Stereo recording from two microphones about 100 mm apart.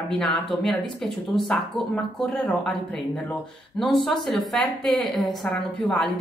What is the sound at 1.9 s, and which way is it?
Speech, 15° left (ahead or behind).